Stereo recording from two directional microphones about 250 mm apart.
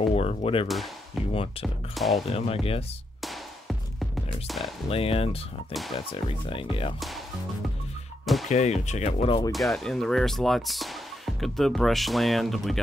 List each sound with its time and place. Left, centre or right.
0.1 s speech: left
0.7 s speech: centre
1.3 s speech: left
2.0 s speech: centre
2.2 s speech: left
3.2 s music: centre
4.8 s speech: left
5.7 s speech: centre
5.9 s speech: left
8.5 s speech: left
9.5 s speech: centre